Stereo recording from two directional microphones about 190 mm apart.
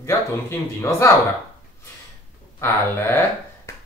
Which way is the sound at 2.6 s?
15° left (ahead or behind).